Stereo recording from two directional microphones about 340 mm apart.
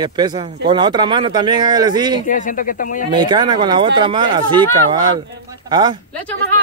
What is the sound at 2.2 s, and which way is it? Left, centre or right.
Speech, left.